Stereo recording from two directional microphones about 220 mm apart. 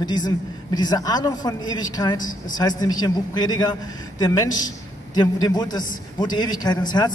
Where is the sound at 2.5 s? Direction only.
15° left (ahead or behind).